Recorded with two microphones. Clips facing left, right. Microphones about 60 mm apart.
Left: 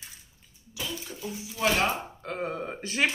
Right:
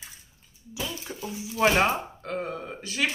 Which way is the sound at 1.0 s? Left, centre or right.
Right.